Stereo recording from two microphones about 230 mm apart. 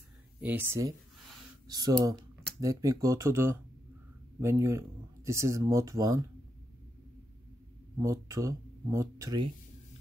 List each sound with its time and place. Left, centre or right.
0.4 s speech: centre
8.0 s speech: centre